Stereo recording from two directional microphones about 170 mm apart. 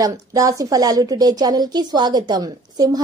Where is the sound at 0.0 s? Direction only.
20° right (ahead or behind).